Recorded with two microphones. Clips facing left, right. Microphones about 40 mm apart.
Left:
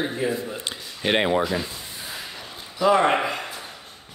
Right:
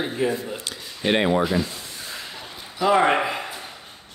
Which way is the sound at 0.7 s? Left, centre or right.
Left.